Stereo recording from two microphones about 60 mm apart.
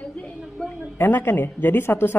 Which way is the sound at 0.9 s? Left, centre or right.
Left.